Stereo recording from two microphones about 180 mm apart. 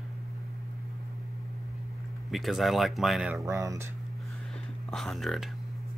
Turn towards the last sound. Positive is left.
turn(degrees=0)  # may be behind; listen again after turning